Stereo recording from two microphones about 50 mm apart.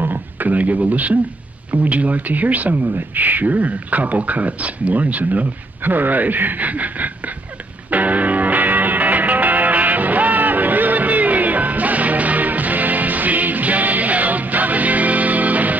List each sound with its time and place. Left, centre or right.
0.0 s speech: right
7.9 s music: right